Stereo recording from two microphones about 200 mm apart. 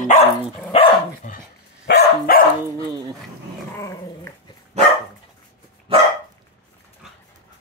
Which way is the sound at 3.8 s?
15° left (ahead or behind).